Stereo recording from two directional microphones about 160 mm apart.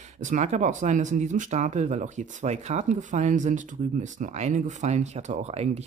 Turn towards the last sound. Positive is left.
turn(degrees=-40)  # may be behind; listen again after turning